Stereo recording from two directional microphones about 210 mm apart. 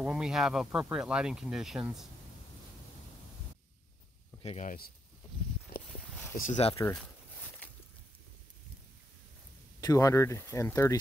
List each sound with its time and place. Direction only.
0.0 s speech: 5° right (ahead or behind)
4.4 s speech: 30° left (ahead or behind)
6.3 s speech: 35° left (ahead or behind)
6.7 s speech: 15° left (ahead or behind)
7.0 s a sound: 5° left (ahead or behind)
9.8 s speech: 15° left (ahead or behind)